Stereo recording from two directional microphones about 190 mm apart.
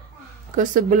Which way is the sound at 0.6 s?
45° right (ahead or behind).